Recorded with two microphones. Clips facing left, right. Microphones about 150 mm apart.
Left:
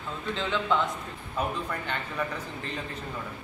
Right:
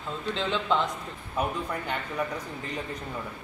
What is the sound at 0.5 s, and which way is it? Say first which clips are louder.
Speech: even; 30° right (ahead or behind).